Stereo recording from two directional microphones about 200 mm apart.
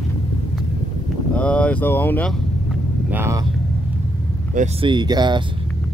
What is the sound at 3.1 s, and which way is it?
Speech, 10° right (ahead or behind).